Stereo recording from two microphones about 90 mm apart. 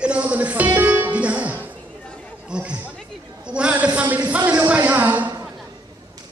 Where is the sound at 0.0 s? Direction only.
15° right (ahead or behind).